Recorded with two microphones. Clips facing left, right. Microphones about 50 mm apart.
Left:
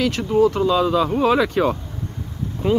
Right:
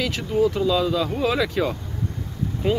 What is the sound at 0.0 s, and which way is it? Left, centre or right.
Speech, centre.